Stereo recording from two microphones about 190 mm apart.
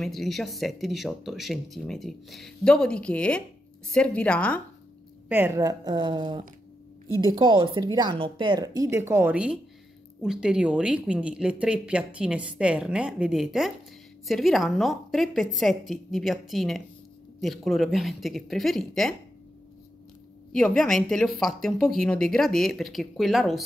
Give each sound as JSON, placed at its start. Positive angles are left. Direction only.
{"t": 0.0, "sound": "speech", "side_deg": 0}
{"t": 5.3, "sound": "speech", "side_deg": -10}
{"t": 20.5, "sound": "speech", "side_deg": 5}